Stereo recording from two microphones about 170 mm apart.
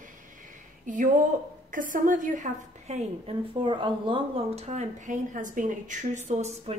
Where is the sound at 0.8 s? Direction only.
50° right (ahead or behind).